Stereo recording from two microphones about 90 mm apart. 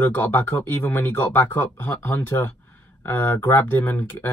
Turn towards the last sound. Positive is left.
turn(degrees=25)  # may be behind; listen again after turning